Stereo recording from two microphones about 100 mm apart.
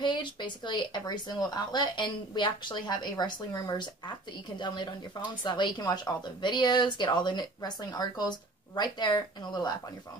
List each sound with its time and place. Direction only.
0.0 s speech: 50° left (ahead or behind)